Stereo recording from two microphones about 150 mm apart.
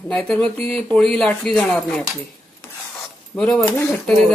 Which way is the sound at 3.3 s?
5° left (ahead or behind).